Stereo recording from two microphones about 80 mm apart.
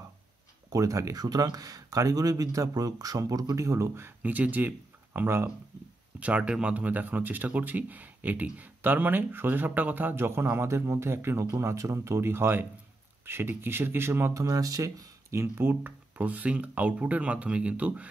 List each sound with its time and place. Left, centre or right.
0.7 s speech: right
6.1 s speech: centre
14.4 s speech: right; by 18.0 s centre